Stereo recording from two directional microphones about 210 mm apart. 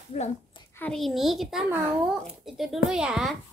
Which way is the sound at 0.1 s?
30° left (ahead or behind).